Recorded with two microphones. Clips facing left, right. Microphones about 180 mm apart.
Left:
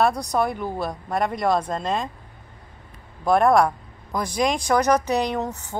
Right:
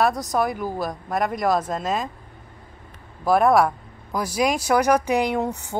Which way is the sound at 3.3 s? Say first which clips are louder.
Even; 5° right (ahead or behind).